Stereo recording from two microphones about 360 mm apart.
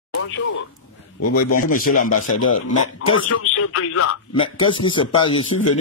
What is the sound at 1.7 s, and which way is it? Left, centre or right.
Speech, left.